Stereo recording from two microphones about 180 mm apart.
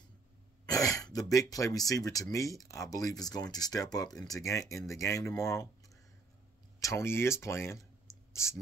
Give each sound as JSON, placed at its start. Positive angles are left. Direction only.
{"t": 0.7, "sound": "speech", "side_deg": 20}
{"t": 6.8, "sound": "speech", "side_deg": 15}
{"t": 8.3, "sound": "clicking", "side_deg": 15}